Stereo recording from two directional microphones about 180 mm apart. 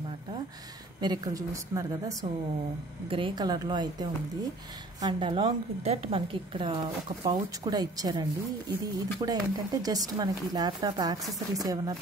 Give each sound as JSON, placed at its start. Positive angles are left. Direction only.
{"t": 1.0, "sound": "a woman's voice", "side_deg": -20}
{"t": 3.1, "sound": "a woman's voice", "side_deg": -30}
{"t": 11.2, "sound": "speech", "side_deg": 0}
{"t": 11.6, "sound": "a woman's voice", "side_deg": -20}